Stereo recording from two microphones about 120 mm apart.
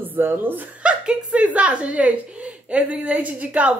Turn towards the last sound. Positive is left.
turn(degrees=-10)  # may be behind; listen again after turning